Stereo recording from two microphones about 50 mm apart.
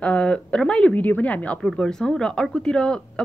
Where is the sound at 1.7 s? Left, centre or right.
Centre.